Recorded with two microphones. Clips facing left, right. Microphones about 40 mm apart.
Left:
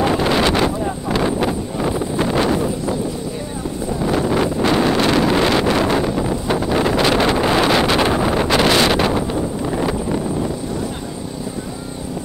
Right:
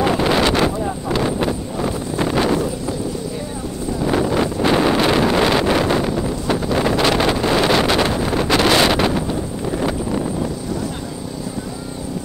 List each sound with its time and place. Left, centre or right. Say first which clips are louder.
0.0 s vehicle: even; centre
4.3 s wind noise: left 1 dB; centre
4.6 s wind noise: right 1 dB; centre
8.0 s wind noise: left 2 dB; centre
8.6 s wind noise: even; centre
9.7 s a sound: right 2 dB; centre